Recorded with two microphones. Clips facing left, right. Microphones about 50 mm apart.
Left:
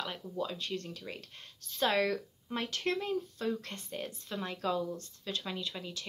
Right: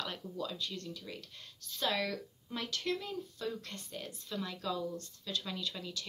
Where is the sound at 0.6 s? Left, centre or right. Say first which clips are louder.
Left 3 dB; left.